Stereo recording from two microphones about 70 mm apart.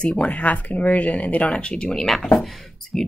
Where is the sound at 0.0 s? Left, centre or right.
Centre.